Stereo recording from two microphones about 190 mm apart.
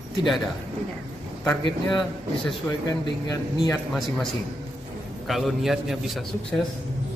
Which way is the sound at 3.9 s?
Centre (ahead or behind).